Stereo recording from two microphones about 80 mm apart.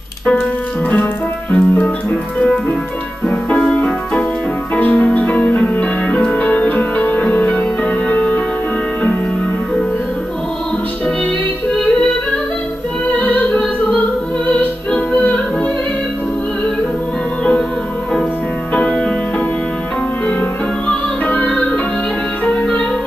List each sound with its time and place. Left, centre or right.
1.5 s music: centre
3.7 s music: centre
13.2 s music: centre
18.7 s music: centre
21.3 s music: left